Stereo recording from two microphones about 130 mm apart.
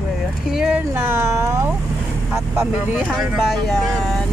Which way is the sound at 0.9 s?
20° right (ahead or behind).